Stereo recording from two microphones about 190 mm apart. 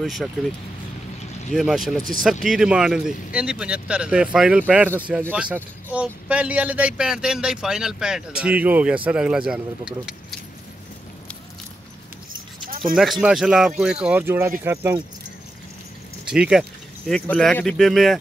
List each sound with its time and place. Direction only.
0.0 s speech: centre (ahead or behind)
1.5 s speech: centre (ahead or behind)
12.6 s a sound: 50° right (ahead or behind)
12.9 s speech: centre (ahead or behind)
16.3 s speech: 5° right (ahead or behind)